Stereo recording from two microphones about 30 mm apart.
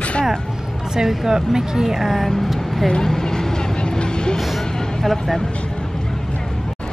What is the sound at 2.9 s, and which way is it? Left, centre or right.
Vehicle, left.